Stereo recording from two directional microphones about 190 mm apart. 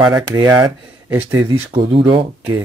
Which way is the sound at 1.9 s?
25° right (ahead or behind).